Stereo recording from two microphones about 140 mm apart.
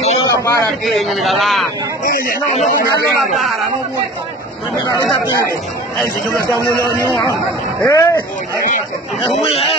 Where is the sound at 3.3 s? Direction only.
Centre (ahead or behind).